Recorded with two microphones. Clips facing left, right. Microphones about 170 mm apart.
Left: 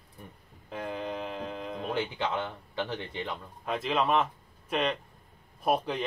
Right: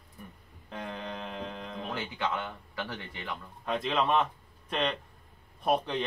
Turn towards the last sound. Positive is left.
turn(degrees=5)  # may be behind; listen again after turning